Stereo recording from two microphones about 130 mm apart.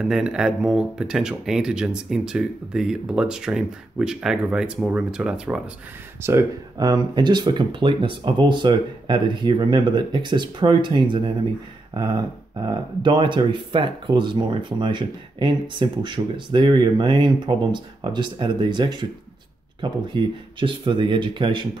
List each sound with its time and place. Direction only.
0.0 s speech: 5° right (ahead or behind)
6.2 s speech: 25° right (ahead or behind)